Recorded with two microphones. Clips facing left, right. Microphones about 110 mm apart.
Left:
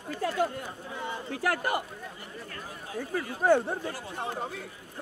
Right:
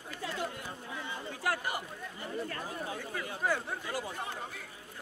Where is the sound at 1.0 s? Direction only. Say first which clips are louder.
Left 5 dB; 65° left (ahead or behind).